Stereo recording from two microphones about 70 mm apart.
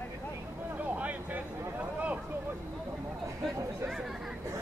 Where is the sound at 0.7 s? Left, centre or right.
Right.